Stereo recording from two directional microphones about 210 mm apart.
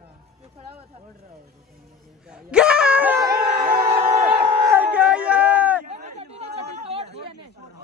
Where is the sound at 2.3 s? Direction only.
5° right (ahead or behind).